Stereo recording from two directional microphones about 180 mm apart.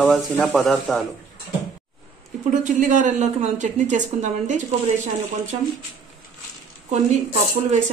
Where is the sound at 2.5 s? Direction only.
45° right (ahead or behind).